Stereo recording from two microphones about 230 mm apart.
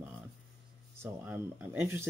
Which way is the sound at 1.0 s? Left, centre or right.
Centre.